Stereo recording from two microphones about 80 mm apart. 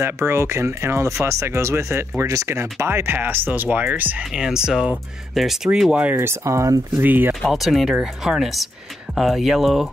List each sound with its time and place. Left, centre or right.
0.0 s speech: right
4.2 s speech: centre
6.1 s speech: right
7.0 s speech: right
7.4 s speech: centre